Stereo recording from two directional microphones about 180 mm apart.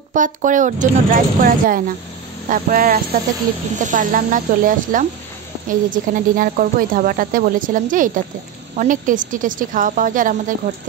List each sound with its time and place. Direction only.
0.1 s speech: 45° right (ahead or behind)